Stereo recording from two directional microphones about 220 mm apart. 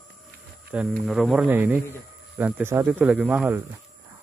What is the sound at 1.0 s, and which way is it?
Speech, centre (ahead or behind).